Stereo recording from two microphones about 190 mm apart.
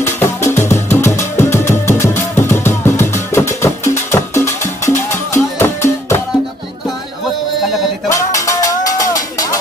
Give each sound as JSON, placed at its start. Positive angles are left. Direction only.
{"t": 0.0, "sound": "music", "side_deg": 15}
{"t": 8.1, "sound": "cowbell", "side_deg": 15}